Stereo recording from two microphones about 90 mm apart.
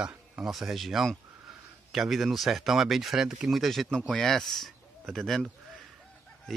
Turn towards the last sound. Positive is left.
turn(degrees=0)  # may be behind; listen again after turning